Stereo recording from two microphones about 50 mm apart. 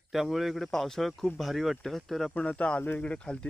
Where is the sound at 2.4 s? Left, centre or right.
Left.